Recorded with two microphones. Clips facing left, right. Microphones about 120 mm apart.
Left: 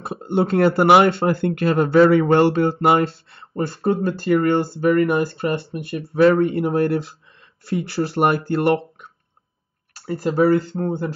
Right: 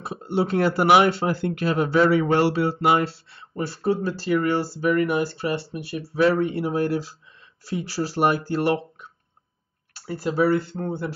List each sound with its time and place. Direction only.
0.3 s speech: 55° left (ahead or behind)
9.9 s speech: 40° left (ahead or behind)